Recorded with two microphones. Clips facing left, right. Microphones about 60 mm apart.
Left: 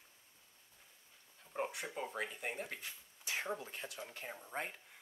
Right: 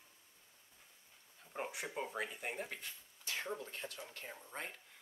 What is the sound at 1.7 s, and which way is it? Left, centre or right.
Speech, centre.